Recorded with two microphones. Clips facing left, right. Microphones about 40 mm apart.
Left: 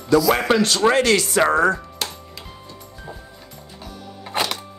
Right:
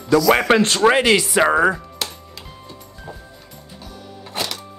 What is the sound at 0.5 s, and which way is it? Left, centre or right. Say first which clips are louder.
Speech: right 2 dB; right.